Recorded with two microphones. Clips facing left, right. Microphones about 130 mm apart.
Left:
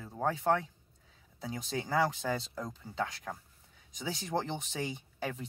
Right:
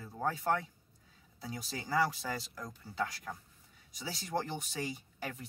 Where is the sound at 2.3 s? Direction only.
25° left (ahead or behind).